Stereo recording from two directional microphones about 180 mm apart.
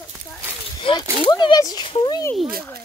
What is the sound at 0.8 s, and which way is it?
Speech, 25° left (ahead or behind).